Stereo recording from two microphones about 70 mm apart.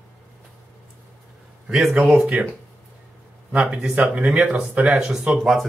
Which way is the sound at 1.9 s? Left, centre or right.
Centre.